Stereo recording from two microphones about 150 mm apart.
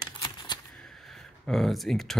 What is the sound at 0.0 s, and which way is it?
Typewriter, 30° left (ahead or behind).